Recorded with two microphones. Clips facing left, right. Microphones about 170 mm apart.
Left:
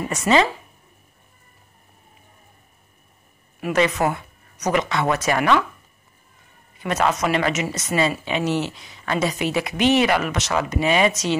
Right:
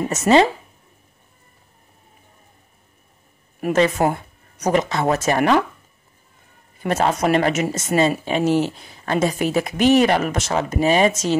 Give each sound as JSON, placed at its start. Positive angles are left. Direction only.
{"t": 0.1, "sound": "speech", "side_deg": -45}
{"t": 3.6, "sound": "speech", "side_deg": -40}
{"t": 6.9, "sound": "a man's voice", "side_deg": -30}
{"t": 7.2, "sound": "speech", "side_deg": -45}